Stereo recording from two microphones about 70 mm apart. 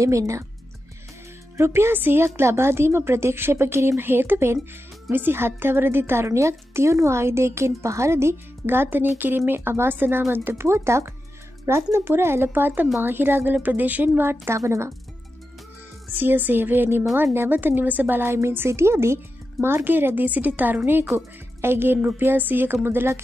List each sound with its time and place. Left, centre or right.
0.0 s speech: right
1.6 s a woman's voice: right
14.6 s speech: right
16.1 s a woman's voice: right